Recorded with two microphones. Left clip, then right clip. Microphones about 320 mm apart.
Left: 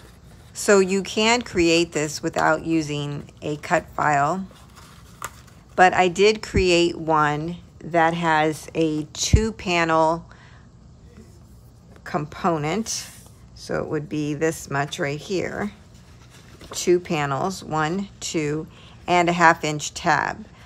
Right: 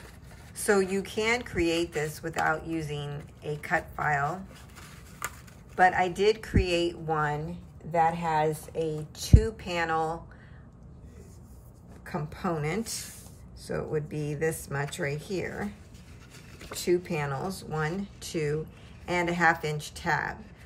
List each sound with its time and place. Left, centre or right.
0.6 s speech: centre
5.8 s speech: centre
8.7 s speech: centre
12.0 s speech: centre
16.7 s speech: centre